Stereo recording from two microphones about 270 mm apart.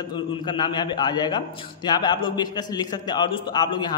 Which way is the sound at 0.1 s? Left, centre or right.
Centre.